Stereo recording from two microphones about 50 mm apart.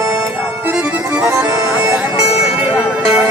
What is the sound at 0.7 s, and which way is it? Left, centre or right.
Accordion, right.